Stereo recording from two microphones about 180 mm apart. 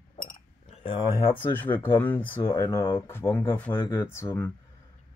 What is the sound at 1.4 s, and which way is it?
Speech, 10° left (ahead or behind).